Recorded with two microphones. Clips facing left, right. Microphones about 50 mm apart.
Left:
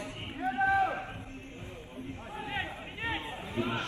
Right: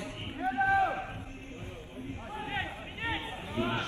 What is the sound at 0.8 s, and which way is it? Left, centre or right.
Run, right.